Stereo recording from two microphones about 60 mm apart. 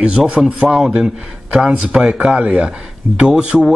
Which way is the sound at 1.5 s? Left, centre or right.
Centre.